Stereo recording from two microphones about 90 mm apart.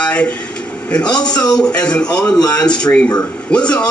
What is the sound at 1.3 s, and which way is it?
Speech, 45° left (ahead or behind).